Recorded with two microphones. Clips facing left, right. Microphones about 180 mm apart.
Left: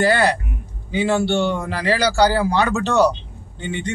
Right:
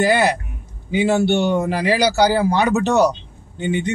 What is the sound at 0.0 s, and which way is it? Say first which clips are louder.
Speech: right 1 dB; 15° right (ahead or behind).